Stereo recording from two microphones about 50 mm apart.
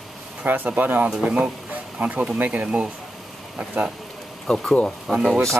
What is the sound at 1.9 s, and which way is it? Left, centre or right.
Speech, right.